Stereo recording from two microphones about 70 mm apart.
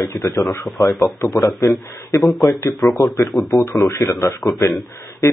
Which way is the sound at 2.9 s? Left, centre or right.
Left.